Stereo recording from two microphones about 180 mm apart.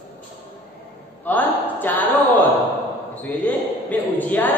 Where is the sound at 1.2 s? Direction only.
10° left (ahead or behind).